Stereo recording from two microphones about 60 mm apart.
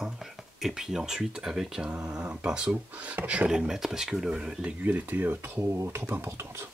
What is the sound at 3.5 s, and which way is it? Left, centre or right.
Speech, centre.